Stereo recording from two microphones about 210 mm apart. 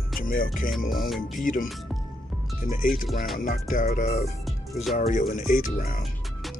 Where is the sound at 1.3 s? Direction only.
40° left (ahead or behind).